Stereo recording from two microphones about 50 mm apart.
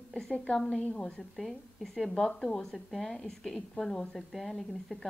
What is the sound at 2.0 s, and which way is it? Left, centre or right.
A woman's voice, centre.